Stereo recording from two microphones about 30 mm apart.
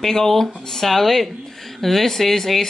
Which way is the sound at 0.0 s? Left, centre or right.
Centre.